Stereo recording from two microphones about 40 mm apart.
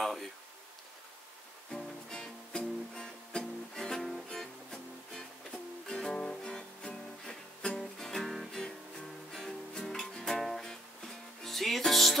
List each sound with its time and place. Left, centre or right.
0.0 s a sound: centre
1.7 s music: centre
5.9 s music: centre